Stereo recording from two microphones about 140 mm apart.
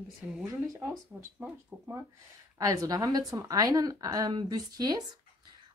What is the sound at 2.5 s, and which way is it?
Speech, 25° right (ahead or behind).